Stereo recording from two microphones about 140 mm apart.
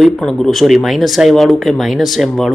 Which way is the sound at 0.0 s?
Centre (ahead or behind).